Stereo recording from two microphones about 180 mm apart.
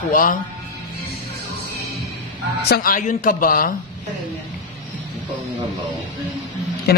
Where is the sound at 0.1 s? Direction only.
50° left (ahead or behind).